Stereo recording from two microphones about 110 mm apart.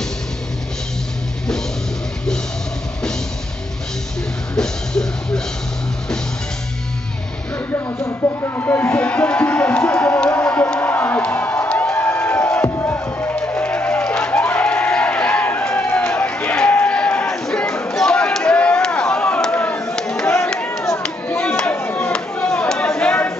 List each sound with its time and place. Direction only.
4.6 s music: 5° left (ahead or behind)
7.7 s music: 25° left (ahead or behind); by 17.7 s 5° left (ahead or behind)
17.9 s chop: 5° left (ahead or behind)
20.2 s a sound: 10° left (ahead or behind)
21.0 s chop: 10° left (ahead or behind)